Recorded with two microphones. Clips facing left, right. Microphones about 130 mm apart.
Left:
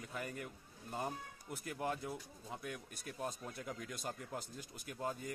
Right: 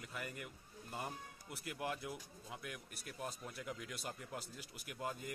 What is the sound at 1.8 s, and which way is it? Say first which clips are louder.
Speech: left 3 dB; 35° left (ahead or behind).